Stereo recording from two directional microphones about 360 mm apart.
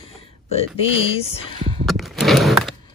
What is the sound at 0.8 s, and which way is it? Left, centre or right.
Speech, centre.